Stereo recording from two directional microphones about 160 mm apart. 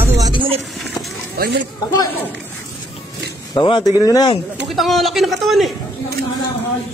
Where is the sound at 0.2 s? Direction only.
30° right (ahead or behind).